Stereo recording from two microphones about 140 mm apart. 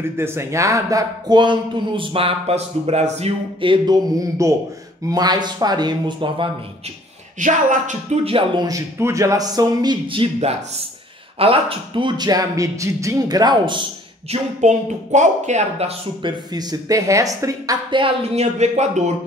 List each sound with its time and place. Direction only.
0.2 s speech: 20° right (ahead or behind); by 6.5 s 35° right (ahead or behind)
7.3 s speech: 65° right (ahead or behind)
8.2 s speech: 40° right (ahead or behind)
8.6 s speech: 20° right (ahead or behind)
14.3 s speech: 55° right (ahead or behind)
16.2 s speech: 30° right (ahead or behind)
17.9 s speech: 45° right (ahead or behind)